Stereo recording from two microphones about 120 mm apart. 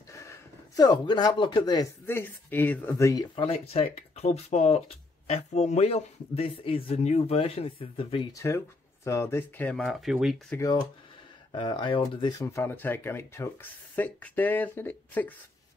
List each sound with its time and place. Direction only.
0.1 s speech: 25° left (ahead or behind)
2.0 s speech: 15° left (ahead or behind)
3.3 s speech: 55° left (ahead or behind)
7.0 s speech: 70° left (ahead or behind); by 8.3 s 50° left (ahead or behind)
8.3 s speech: 25° left (ahead or behind)
9.8 s speech: centre (ahead or behind)
10.6 s speech: 35° left (ahead or behind)
11.5 s speech: 45° left (ahead or behind)
12.4 s speech: 20° left (ahead or behind)